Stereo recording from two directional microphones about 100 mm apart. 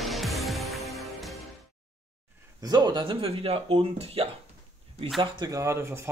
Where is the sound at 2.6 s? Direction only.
45° right (ahead or behind).